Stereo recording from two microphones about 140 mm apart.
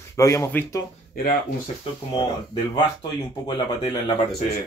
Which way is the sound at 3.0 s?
30° left (ahead or behind).